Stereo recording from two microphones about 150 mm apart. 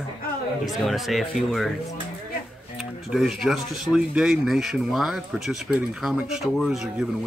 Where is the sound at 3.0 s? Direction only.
Centre (ahead or behind).